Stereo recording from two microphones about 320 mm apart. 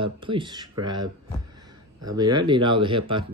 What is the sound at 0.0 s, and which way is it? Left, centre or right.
Speech, centre.